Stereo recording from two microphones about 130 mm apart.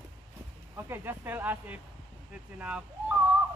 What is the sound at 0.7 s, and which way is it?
Speech, 15° right (ahead or behind).